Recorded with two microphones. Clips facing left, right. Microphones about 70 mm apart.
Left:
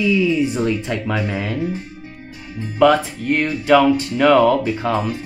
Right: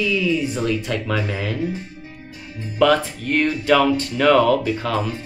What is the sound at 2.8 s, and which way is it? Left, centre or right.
Speech, centre.